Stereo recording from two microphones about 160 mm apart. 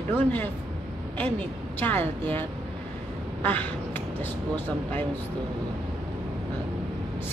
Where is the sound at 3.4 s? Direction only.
10° left (ahead or behind).